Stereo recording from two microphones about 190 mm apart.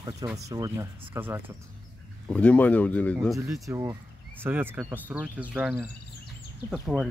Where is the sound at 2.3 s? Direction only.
5° left (ahead or behind).